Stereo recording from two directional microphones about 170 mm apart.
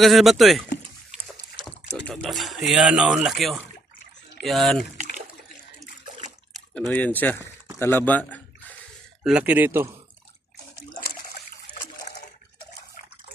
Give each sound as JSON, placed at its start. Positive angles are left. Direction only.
{"t": 0.0, "sound": "speech", "side_deg": 0}
{"t": 2.0, "sound": "speech", "side_deg": 0}
{"t": 6.7, "sound": "speech", "side_deg": 5}
{"t": 9.2, "sound": "speech", "side_deg": -5}
{"t": 11.0, "sound": "trickle", "side_deg": 60}
{"t": 12.1, "sound": "water", "side_deg": 35}